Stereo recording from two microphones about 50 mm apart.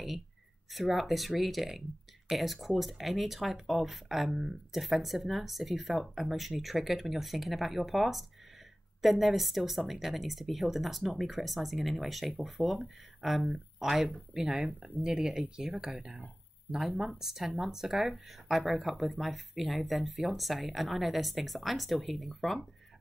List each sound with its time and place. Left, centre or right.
0.7 s speech: centre
14.5 s speech: right
15.0 s speech: centre